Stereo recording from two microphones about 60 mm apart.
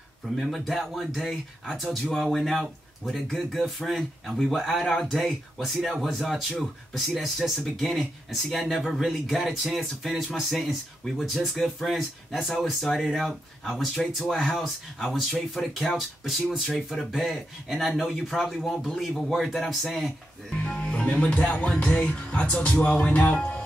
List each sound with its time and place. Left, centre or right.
0.4 s speech: centre
20.6 s speech: centre